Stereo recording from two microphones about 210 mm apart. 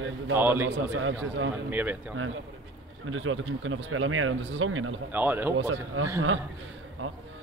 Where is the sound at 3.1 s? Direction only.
70° right (ahead or behind).